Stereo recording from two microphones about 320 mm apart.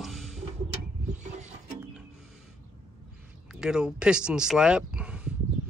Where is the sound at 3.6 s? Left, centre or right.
Centre.